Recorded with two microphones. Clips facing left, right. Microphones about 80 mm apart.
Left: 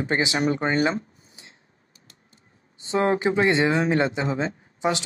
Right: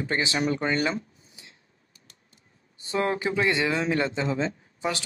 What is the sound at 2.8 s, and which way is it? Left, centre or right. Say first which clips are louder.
Speech: left 5 dB; left.